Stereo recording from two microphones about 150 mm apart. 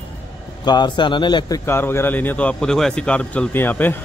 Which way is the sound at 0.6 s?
30° left (ahead or behind).